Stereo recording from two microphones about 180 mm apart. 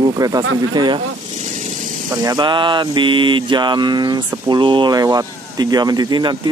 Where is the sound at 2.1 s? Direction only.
20° right (ahead or behind).